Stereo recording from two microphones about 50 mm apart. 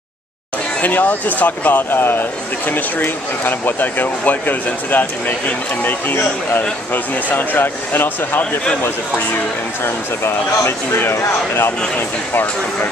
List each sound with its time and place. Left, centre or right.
0.7 s speech: left